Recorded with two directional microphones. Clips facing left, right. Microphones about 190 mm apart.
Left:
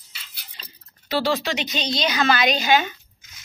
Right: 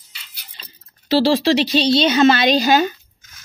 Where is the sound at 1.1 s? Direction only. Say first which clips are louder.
Right 8 dB; 30° right (ahead or behind).